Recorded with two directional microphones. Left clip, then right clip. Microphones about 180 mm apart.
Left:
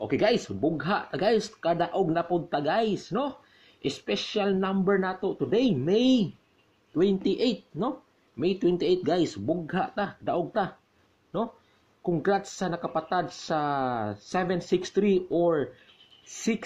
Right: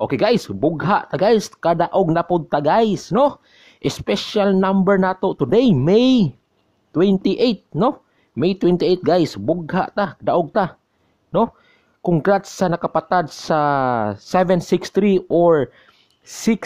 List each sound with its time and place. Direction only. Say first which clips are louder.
0.0 s speech: right 7 dB; 40° right (ahead or behind)
12.0 s speech: right 9 dB; 40° right (ahead or behind)